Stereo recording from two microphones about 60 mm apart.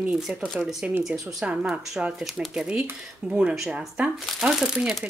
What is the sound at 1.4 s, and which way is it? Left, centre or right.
Speech, centre.